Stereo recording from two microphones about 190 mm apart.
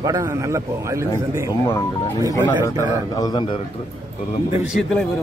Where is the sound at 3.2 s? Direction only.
25° left (ahead or behind).